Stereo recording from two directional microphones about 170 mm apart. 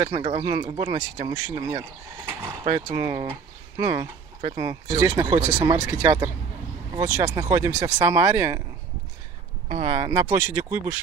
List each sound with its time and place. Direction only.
0.0 s speech: 25° right (ahead or behind)
9.7 s speech: 30° right (ahead or behind); by 11.0 s 15° right (ahead or behind)